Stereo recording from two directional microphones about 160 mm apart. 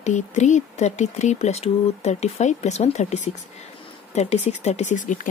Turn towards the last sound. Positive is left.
turn(degrees=50)  # may be behind; listen again after turning